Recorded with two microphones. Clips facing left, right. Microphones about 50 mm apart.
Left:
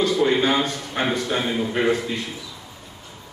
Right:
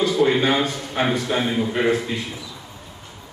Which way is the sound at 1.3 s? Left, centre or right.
Centre.